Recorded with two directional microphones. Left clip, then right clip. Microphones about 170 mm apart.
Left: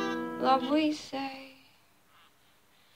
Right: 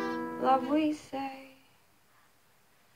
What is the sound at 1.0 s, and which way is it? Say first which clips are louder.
Music: left 1 dB; 5° right (ahead or behind).